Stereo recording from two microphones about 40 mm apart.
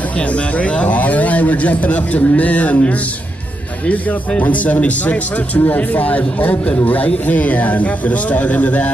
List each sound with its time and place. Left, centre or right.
0.6 s a man's voice: left
4.4 s a man's voice: left